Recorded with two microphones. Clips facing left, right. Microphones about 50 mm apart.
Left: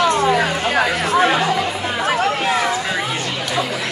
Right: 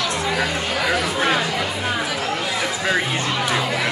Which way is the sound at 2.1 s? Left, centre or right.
Left.